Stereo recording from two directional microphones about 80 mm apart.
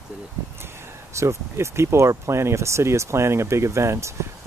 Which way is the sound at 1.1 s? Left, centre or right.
Right.